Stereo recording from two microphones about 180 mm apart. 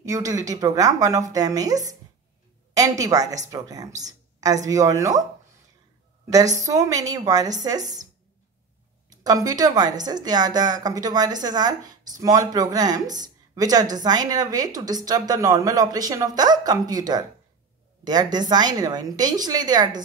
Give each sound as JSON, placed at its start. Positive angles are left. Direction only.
{"t": 0.0, "sound": "speech", "side_deg": -20}
{"t": 6.6, "sound": "speech", "side_deg": -20}
{"t": 9.1, "sound": "speech", "side_deg": -20}